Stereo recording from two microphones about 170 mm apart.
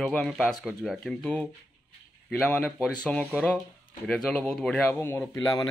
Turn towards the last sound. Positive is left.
turn(degrees=20)  # may be behind; listen again after turning